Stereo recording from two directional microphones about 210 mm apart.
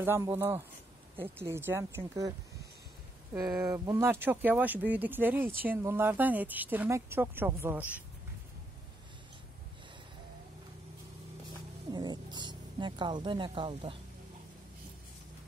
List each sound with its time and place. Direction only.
0.0 s speech: 10° right (ahead or behind)
3.3 s speech: 15° right (ahead or behind)
11.9 s a sound: 20° right (ahead or behind)